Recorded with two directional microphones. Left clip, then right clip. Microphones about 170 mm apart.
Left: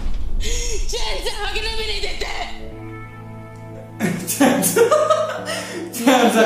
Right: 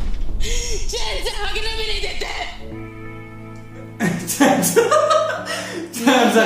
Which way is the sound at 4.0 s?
10° left (ahead or behind).